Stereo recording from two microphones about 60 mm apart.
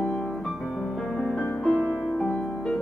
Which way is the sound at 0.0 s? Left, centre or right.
Centre.